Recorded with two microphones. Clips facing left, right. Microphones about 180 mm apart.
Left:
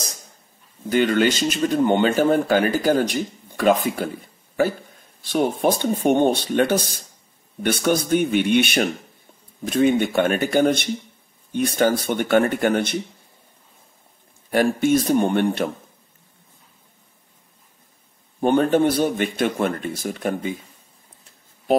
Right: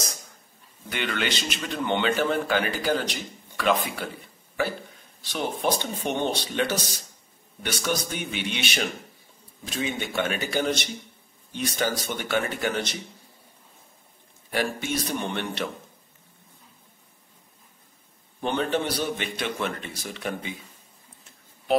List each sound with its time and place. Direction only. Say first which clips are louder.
0.8 s speech: left 11 dB; 40° left (ahead or behind)
14.5 s speech: left 10 dB; 50° left (ahead or behind)
18.4 s speech: left 9 dB; 50° left (ahead or behind)